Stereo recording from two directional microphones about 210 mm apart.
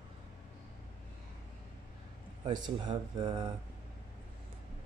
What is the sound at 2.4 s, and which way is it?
Speech, 20° right (ahead or behind).